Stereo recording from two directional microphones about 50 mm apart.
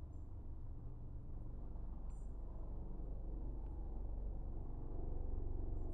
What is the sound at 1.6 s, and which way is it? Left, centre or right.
Vehicle, centre.